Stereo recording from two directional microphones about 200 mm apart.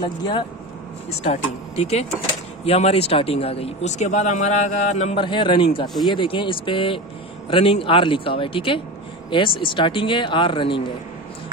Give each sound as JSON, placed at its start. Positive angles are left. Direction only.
{"t": 0.0, "sound": "speech", "side_deg": 25}